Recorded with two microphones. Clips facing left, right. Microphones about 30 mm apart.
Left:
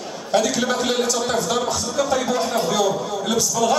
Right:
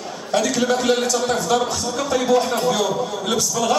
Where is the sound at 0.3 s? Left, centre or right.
Centre.